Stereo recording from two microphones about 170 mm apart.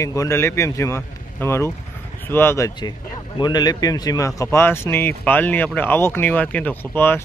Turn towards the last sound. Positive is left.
turn(degrees=10)  # may be behind; listen again after turning